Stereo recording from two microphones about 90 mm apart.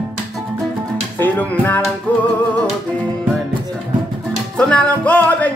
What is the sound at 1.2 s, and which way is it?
Speech, 20° left (ahead or behind).